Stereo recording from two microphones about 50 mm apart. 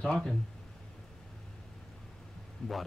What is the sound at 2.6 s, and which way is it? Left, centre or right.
Speech, centre.